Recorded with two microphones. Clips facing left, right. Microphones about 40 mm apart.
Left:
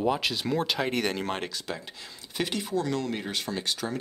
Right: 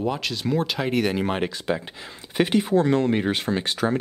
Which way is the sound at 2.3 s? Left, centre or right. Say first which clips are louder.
Right 9 dB; right.